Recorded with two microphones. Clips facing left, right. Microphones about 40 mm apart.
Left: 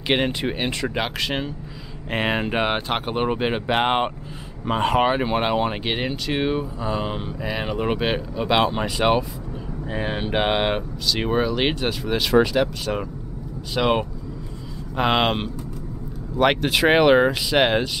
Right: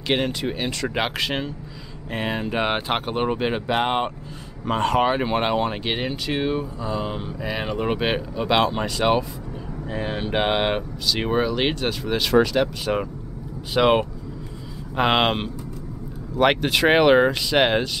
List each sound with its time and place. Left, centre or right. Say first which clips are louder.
0.1 s speech: left 1 dB; left
0.8 s speech: right 1 dB; centre
2.0 s speech: left 3 dB; left
2.6 s speech: even; centre
3.1 s speech: left 2 dB; centre
4.6 s speech: left 1 dB; centre
7.3 s speech: even; centre
10.3 s speech: even; centre